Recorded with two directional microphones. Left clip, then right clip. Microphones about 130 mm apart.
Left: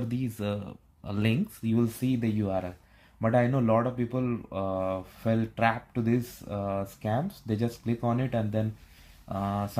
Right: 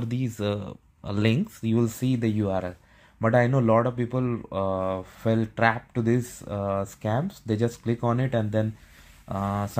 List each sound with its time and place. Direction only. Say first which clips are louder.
0.1 s speech: right 7 dB; 30° right (ahead or behind)